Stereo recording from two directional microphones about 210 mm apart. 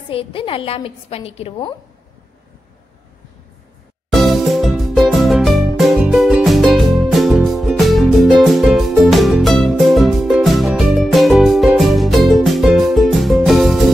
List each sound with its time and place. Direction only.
0.1 s a woman's voice: 25° left (ahead or behind)
4.1 s music: centre (ahead or behind)